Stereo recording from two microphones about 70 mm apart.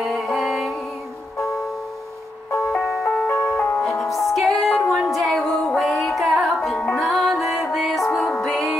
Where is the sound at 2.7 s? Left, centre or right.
Left.